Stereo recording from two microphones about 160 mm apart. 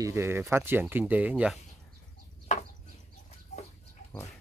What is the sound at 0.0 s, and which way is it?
Speech, 15° right (ahead or behind).